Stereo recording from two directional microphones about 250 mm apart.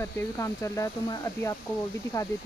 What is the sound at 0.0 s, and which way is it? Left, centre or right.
Speech, centre.